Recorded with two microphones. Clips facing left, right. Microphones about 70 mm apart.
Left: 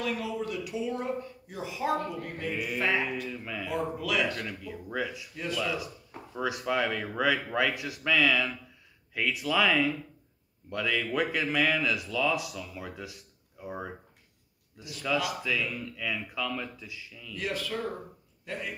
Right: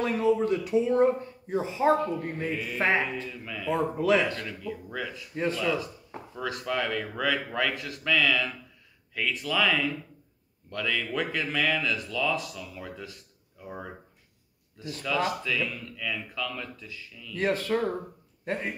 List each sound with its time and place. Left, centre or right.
0.0 s speech: right
2.5 s speech: centre
2.8 s mantra: right
3.3 s speech: centre
3.7 s speech: right
4.4 s speech: centre
5.3 s speech: right
6.3 s speech: centre
14.8 s speech: right
15.4 s speech: centre
17.4 s a man's voice: right